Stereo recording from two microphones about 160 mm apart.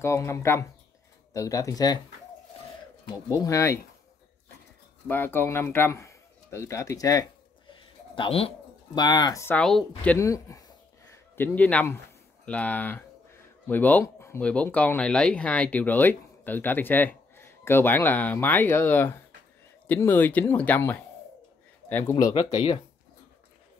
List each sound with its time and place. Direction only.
0.0 s speech: 15° left (ahead or behind)
3.3 s speech: 20° left (ahead or behind)
5.0 s a man's voice: 10° left (ahead or behind)
8.1 s speech: 35° left (ahead or behind); by 9.6 s 20° left (ahead or behind)
9.6 s speech: 5° left (ahead or behind)
10.1 s speech: 20° left (ahead or behind)
22.1 s speech: 35° left (ahead or behind)